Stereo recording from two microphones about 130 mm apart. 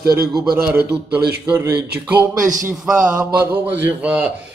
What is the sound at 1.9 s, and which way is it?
A man's voice, 10° right (ahead or behind).